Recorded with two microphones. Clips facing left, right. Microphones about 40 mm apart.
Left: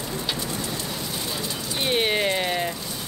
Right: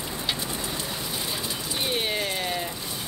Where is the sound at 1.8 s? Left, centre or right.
Left.